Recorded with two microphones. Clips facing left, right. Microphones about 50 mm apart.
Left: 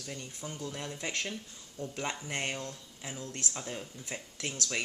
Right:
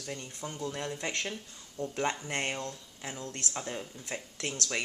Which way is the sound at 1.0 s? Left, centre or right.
Centre.